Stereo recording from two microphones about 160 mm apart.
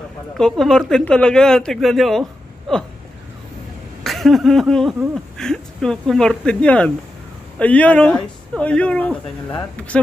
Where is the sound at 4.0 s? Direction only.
Centre (ahead or behind).